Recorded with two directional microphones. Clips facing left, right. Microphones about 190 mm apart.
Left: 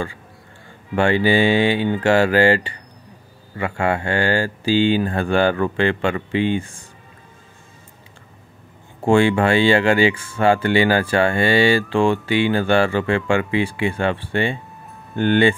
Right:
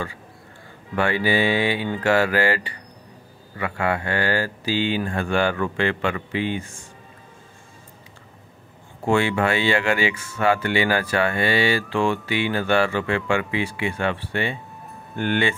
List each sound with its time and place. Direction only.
0.9 s speech: 30° left (ahead or behind)
9.0 s speech: 30° left (ahead or behind)